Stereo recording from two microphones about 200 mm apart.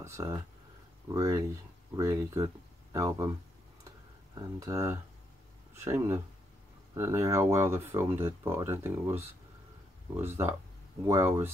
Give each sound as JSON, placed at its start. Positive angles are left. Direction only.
{"t": 0.0, "sound": "speech", "side_deg": -15}
{"t": 4.4, "sound": "speech", "side_deg": -15}
{"t": 10.1, "sound": "speech", "side_deg": -10}